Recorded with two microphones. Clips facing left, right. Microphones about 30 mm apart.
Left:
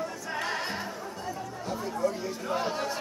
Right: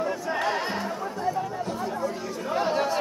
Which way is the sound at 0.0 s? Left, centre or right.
Centre.